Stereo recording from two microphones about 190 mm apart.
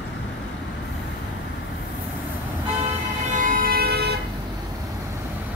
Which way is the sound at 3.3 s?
45° right (ahead or behind).